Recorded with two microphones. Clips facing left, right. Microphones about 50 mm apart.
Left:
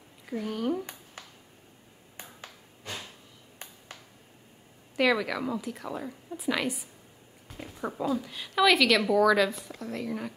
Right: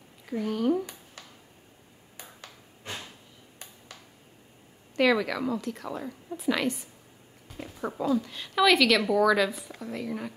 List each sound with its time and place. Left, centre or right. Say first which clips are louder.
0.3 s speech: right 4 dB; centre
1.2 s a sound: left 1 dB; left
4.9 s speech: right 2 dB; centre